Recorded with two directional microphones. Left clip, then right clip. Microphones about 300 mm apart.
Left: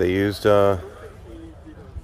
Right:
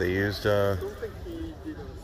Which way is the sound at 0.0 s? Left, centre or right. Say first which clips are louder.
Left 7 dB; centre.